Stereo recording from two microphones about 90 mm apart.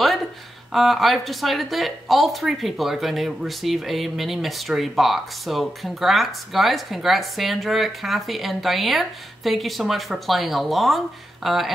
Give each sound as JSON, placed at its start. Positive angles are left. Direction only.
{"t": 0.7, "sound": "speech", "side_deg": 0}